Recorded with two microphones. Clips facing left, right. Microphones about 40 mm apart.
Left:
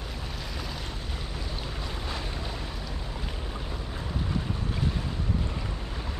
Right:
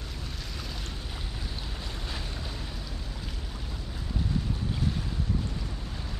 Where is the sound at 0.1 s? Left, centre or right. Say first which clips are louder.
Left 3 dB; centre.